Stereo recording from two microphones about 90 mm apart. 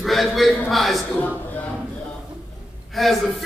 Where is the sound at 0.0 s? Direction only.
Centre (ahead or behind).